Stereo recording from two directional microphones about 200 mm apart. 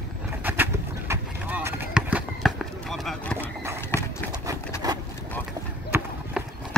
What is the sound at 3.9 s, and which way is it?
Clip-clop, 10° left (ahead or behind).